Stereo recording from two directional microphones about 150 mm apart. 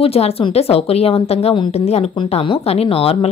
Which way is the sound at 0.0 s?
40° left (ahead or behind).